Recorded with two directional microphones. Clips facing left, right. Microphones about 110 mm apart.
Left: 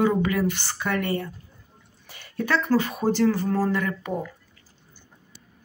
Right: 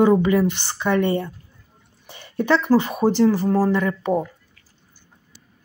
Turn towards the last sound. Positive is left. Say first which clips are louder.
# right 7 dB
turn(degrees=-25)  # may be behind; listen again after turning